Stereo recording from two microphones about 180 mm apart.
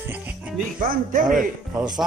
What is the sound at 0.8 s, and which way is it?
Speech, 50° right (ahead or behind).